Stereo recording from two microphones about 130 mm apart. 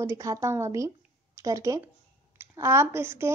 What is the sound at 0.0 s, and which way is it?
Speech, 20° right (ahead or behind).